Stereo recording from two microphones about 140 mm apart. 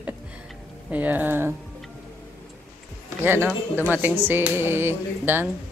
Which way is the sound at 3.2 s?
15° right (ahead or behind).